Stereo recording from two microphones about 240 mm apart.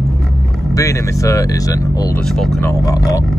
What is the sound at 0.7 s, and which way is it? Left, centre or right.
Speech, centre.